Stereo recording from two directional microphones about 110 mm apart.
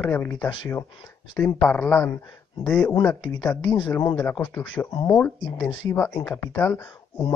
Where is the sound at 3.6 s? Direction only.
45° left (ahead or behind).